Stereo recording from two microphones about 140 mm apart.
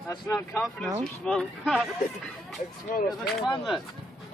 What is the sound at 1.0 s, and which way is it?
Speech, 5° left (ahead or behind).